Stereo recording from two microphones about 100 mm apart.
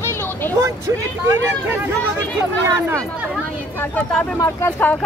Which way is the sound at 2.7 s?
25° right (ahead or behind).